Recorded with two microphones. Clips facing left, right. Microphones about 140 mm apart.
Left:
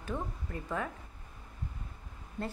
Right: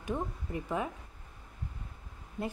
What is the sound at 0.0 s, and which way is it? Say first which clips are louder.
Speech: right 2 dB; 15° right (ahead or behind).